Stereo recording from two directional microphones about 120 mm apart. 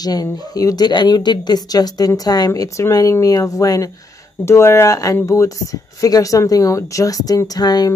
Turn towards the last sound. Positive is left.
turn(degrees=35)  # may be behind; listen again after turning